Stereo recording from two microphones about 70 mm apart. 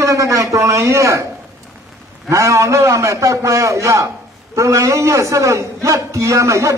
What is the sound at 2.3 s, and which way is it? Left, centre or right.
A man's voice, right.